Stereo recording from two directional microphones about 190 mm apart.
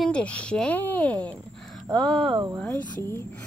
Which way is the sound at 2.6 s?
15° left (ahead or behind).